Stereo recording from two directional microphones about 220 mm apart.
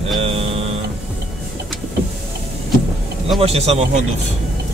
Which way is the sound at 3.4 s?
25° right (ahead or behind).